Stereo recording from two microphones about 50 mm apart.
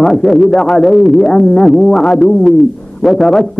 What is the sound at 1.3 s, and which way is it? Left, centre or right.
Music, centre.